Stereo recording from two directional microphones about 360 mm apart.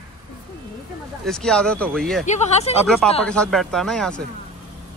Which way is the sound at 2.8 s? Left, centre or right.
Centre.